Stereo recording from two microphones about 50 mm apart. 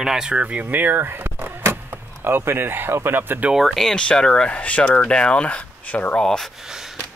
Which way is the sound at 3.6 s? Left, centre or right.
Centre.